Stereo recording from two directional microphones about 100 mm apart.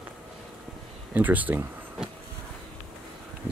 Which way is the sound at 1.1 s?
15° right (ahead or behind).